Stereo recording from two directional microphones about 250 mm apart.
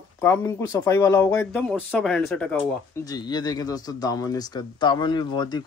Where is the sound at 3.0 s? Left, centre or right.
Centre.